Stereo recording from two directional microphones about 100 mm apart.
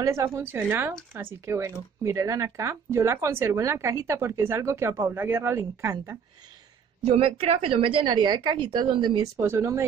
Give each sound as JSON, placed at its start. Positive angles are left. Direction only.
{"t": 0.0, "sound": "speech", "side_deg": -30}
{"t": 7.1, "sound": "a woman's voice", "side_deg": -75}
{"t": 9.4, "sound": "speech", "side_deg": -30}